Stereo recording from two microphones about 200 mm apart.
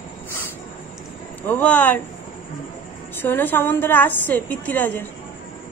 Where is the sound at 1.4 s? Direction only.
10° left (ahead or behind).